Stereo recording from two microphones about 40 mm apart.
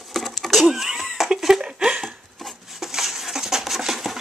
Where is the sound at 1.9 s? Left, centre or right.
Centre.